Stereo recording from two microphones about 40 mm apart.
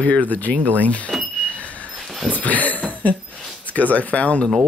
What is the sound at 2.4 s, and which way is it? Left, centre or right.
Speech, left.